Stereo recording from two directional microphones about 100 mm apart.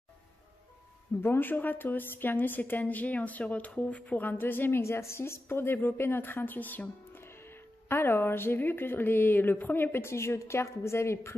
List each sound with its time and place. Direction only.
1.2 s a woman's voice: 20° left (ahead or behind)